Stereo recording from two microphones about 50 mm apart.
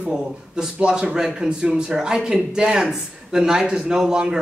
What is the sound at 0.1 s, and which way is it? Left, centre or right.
A man's voice, centre.